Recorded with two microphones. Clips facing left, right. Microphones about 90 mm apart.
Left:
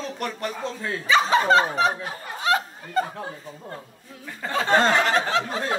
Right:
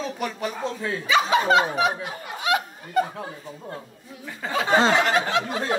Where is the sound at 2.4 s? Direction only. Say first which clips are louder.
Left 1 dB; 35° left (ahead or behind).